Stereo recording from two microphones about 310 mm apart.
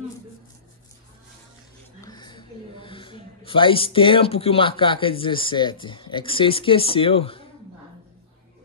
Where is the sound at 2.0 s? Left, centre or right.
Centre.